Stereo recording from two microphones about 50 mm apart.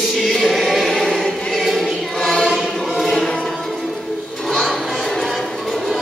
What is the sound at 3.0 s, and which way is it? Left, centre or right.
Music, centre.